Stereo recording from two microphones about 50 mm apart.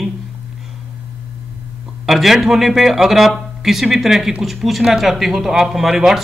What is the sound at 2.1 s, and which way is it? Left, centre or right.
Speech, centre.